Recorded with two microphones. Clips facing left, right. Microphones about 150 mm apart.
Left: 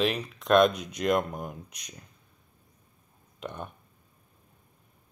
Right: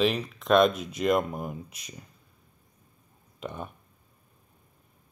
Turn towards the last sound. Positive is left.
turn(degrees=0)  # may be behind; listen again after turning